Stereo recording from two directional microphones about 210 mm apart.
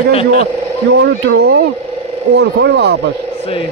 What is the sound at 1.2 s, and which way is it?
Speech, 55° right (ahead or behind).